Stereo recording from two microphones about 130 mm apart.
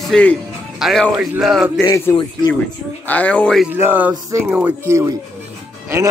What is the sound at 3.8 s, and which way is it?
Speech, 15° right (ahead or behind).